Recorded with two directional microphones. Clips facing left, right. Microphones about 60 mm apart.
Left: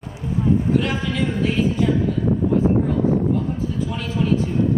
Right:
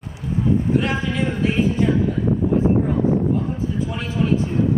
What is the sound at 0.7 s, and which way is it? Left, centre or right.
Speech, right.